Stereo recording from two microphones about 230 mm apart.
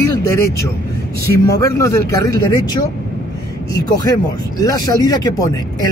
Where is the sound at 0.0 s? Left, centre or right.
Centre.